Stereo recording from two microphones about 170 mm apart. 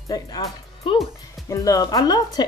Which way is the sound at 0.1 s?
25° left (ahead or behind).